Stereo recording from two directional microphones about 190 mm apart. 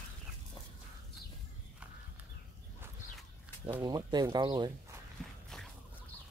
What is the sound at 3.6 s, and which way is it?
Speech, 20° right (ahead or behind).